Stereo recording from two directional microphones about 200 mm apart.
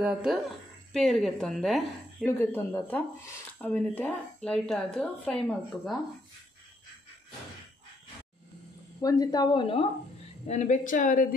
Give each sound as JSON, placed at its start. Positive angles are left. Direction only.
{"t": 0.0, "sound": "a woman's voice", "side_deg": -5}
{"t": 2.2, "sound": "a woman's voice", "side_deg": 10}
{"t": 9.0, "sound": "a woman's voice", "side_deg": 20}
{"t": 10.4, "sound": "a woman's voice", "side_deg": 35}